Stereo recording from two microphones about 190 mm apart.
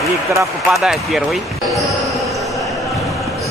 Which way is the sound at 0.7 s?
Centre (ahead or behind).